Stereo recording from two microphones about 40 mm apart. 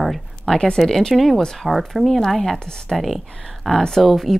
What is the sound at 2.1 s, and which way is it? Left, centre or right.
A woman's voice, centre.